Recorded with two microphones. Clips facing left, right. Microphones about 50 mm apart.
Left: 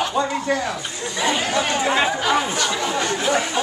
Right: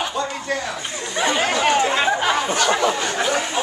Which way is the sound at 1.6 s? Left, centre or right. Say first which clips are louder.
Right 4 dB; right.